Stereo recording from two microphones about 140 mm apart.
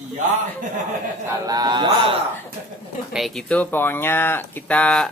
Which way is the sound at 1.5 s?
30° right (ahead or behind).